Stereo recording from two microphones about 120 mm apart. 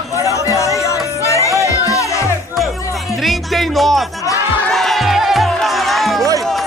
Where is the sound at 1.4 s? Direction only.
25° right (ahead or behind).